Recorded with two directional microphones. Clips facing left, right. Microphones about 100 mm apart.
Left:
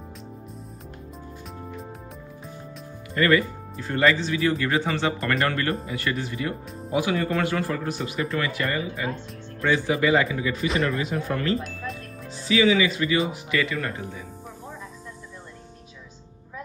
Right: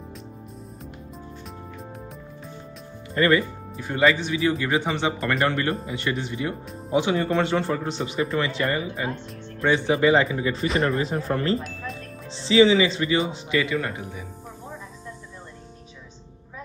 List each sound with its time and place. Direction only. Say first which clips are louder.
3.2 s speech: even; 30° right (ahead or behind)
4.0 s speech: right 1 dB; 15° right (ahead or behind); by 11.6 s 35° right (ahead or behind)
11.6 s speech: left 1 dB; centre (ahead or behind)
12.3 s speech: right 4 dB; 25° right (ahead or behind)